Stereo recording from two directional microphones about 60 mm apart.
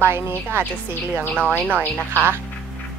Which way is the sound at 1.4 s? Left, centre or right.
Left.